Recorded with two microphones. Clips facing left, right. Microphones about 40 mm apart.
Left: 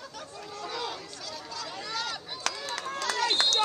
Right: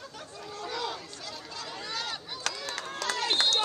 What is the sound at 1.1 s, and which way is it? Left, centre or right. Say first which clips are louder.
Chatter: left 1 dB; right.